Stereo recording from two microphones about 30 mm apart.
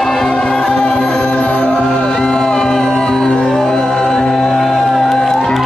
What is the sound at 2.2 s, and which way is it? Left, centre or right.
Music, left.